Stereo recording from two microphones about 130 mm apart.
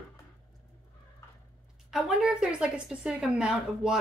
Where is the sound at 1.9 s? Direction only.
5° right (ahead or behind).